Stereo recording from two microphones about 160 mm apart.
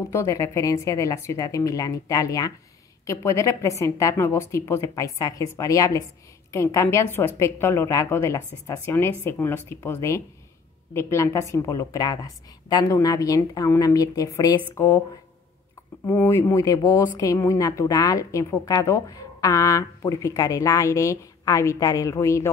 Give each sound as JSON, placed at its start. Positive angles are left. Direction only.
{"t": 0.1, "sound": "a woman's voice", "side_deg": 15}
{"t": 16.1, "sound": "speech", "side_deg": 15}